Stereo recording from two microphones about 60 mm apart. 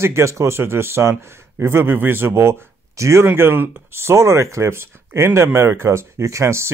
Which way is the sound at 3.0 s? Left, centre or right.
Right.